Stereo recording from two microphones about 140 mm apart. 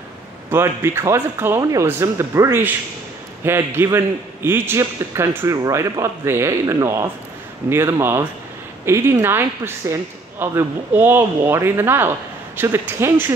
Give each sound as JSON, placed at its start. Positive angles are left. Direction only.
{"t": 0.5, "sound": "a man's voice", "side_deg": -20}